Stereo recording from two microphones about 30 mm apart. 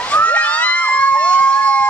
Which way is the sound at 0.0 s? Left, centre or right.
Left.